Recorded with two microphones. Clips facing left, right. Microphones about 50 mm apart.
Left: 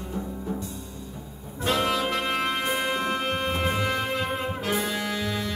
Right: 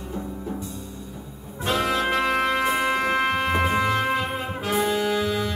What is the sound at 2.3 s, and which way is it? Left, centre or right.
Music, right.